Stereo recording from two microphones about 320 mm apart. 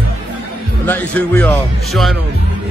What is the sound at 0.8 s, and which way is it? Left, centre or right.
Speech, centre.